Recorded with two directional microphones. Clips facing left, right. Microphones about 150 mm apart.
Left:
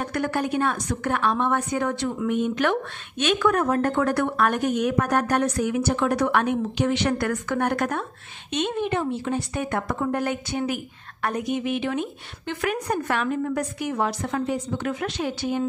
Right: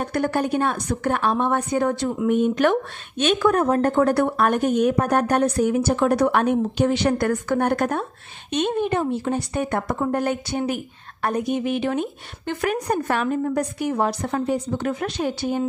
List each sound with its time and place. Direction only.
0.0 s a woman's voice: 35° right (ahead or behind)
3.2 s a woman's voice: 30° right (ahead or behind)